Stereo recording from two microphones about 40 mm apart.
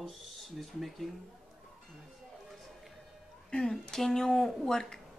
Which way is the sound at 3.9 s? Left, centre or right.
Centre.